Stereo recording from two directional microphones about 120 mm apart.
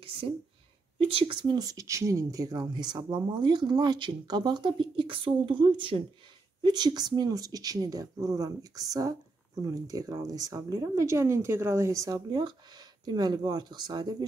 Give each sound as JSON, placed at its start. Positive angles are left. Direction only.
{"t": 0.9, "sound": "a woman's voice", "side_deg": -50}